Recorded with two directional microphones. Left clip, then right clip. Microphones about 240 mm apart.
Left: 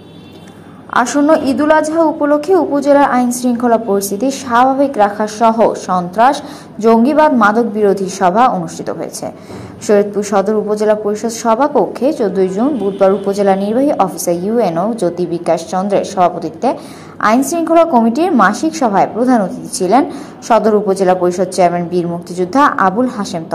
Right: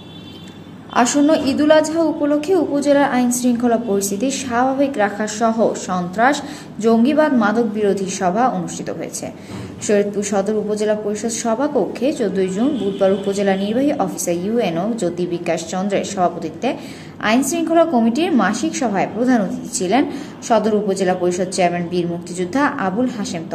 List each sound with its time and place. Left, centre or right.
0.9 s a woman's voice: centre
6.8 s a woman's voice: centre